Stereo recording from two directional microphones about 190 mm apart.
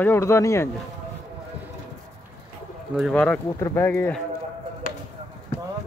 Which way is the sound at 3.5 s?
15° left (ahead or behind).